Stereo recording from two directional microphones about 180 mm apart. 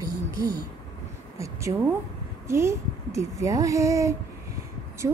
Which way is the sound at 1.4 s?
15° right (ahead or behind).